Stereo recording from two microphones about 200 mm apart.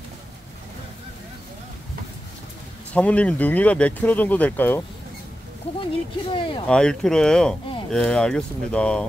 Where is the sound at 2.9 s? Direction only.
5° left (ahead or behind).